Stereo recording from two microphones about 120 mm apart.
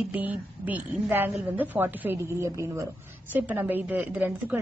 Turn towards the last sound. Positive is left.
turn(degrees=-15)  # may be behind; listen again after turning